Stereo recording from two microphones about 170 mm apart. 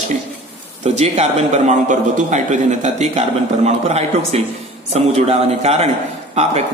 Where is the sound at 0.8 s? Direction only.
40° right (ahead or behind).